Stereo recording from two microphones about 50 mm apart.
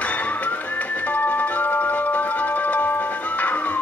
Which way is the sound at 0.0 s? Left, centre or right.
Left.